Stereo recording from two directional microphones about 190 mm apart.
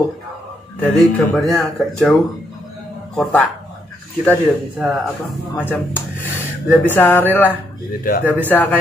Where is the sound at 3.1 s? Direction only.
10° left (ahead or behind).